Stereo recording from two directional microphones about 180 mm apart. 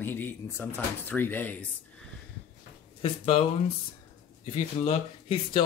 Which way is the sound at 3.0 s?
30° left (ahead or behind).